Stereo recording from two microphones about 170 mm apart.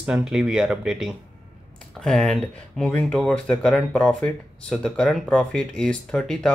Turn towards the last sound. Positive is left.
turn(degrees=5)  # may be behind; listen again after turning